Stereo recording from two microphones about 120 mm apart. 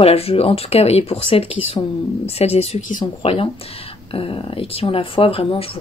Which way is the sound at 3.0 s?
50° left (ahead or behind).